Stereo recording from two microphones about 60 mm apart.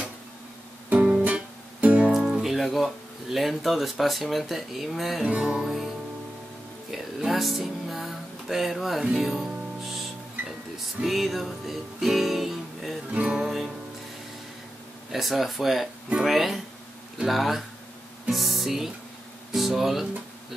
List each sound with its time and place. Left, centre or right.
0.8 s music: right
2.1 s speech: centre
5.2 s music: centre
6.9 s speech: centre
9.2 s music: centre
11.0 s music: centre
13.1 s music: centre
15.0 s music: centre